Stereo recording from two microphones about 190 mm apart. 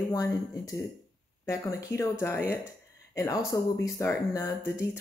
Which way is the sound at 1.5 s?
15° left (ahead or behind).